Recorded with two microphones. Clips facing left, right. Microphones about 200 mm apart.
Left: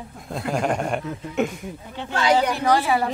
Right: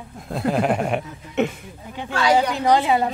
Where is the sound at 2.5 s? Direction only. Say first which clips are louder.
Right 2 dB; 20° right (ahead or behind).